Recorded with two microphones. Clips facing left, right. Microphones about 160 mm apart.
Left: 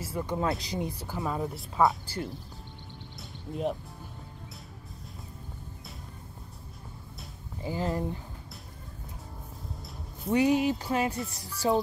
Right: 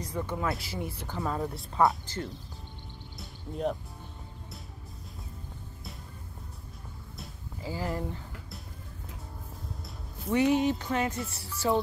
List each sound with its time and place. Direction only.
0.0 s speech: 5° left (ahead or behind)
0.4 s speech: 20° left (ahead or behind)
1.0 s speech: 10° left (ahead or behind)
3.2 s music: centre (ahead or behind)
7.6 s speech: 20° left (ahead or behind)
10.3 s speech: 10° left (ahead or behind)
11.6 s speech: 25° left (ahead or behind)